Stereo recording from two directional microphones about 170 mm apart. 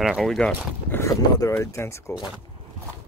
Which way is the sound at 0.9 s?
15° left (ahead or behind).